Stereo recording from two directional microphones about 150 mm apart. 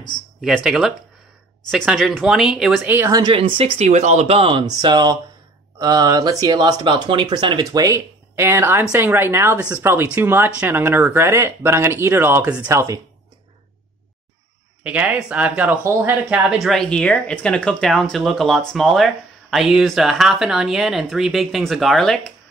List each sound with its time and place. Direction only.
0.7 s speech: 5° right (ahead or behind)
3.0 s speech: 25° right (ahead or behind)
14.8 s speech: 10° right (ahead or behind)
16.6 s speech: 5° left (ahead or behind)